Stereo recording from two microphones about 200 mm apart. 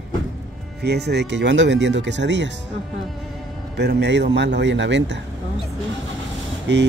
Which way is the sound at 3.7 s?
55° right (ahead or behind).